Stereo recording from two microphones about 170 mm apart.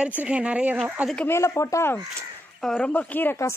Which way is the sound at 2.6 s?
5° left (ahead or behind).